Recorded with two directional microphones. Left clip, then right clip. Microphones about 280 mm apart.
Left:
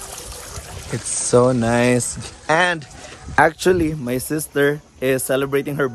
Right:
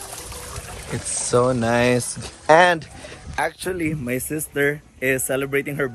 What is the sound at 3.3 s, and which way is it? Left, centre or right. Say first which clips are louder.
Speech: left 10 dB; left.